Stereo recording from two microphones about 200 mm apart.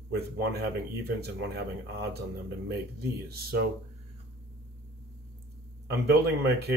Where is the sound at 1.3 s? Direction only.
60° right (ahead or behind).